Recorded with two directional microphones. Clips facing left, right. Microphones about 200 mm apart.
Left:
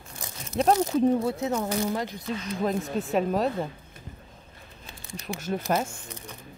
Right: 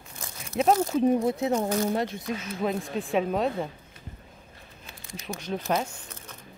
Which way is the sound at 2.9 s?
Centre (ahead or behind).